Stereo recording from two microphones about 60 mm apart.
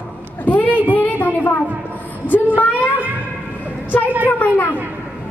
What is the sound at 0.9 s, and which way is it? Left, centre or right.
Speech, left.